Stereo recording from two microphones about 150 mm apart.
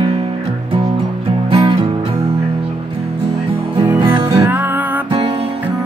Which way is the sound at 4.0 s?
30° right (ahead or behind).